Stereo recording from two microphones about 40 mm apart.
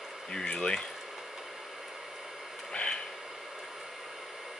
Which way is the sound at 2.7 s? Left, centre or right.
Left.